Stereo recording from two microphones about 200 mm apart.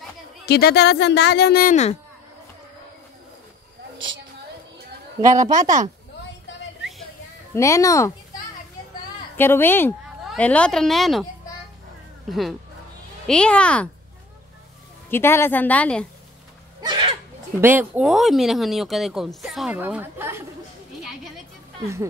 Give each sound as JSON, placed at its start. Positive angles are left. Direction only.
{"t": 0.5, "sound": "speech", "side_deg": 55}
{"t": 5.2, "sound": "a woman's voice", "side_deg": -15}
{"t": 7.5, "sound": "a woman's voice", "side_deg": 15}
{"t": 9.4, "sound": "a woman's voice", "side_deg": 10}
{"t": 12.3, "sound": "speech", "side_deg": 0}
{"t": 15.0, "sound": "a woman's voice", "side_deg": 10}
{"t": 16.8, "sound": "a sound", "side_deg": -20}
{"t": 17.6, "sound": "speech", "side_deg": -10}
{"t": 21.0, "sound": "a sound", "side_deg": 0}